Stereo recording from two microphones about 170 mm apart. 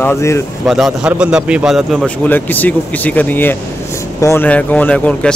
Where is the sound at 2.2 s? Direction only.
10° left (ahead or behind).